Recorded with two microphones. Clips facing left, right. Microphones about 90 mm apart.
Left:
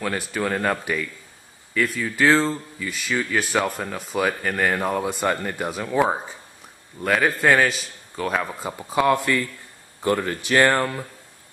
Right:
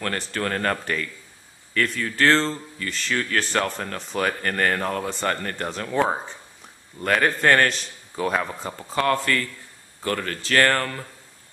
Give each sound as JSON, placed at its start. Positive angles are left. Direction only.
{"t": 0.0, "sound": "a man's voice", "side_deg": 5}